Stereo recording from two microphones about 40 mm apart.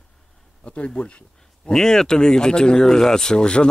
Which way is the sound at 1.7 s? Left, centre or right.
Centre.